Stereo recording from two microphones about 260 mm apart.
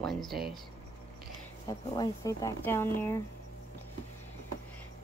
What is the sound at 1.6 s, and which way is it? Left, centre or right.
Speech, centre.